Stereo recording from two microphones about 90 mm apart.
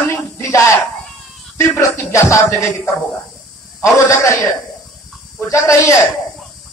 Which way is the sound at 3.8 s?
35° left (ahead or behind).